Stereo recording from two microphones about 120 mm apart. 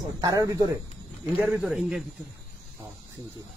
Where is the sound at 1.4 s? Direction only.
15° right (ahead or behind).